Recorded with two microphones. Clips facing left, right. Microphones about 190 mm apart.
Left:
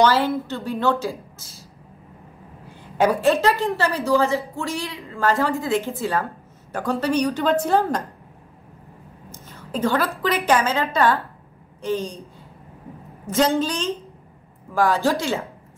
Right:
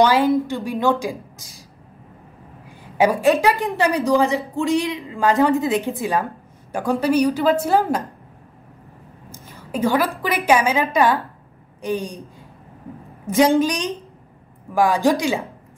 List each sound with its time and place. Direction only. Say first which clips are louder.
0.0 s a woman's voice: right 3 dB; 15° right (ahead or behind)
3.0 s a woman's voice: right 2 dB; 10° right (ahead or behind)
9.5 s a woman's voice: right 2 dB; 10° right (ahead or behind)
13.3 s a woman's voice: right 4 dB; 15° right (ahead or behind)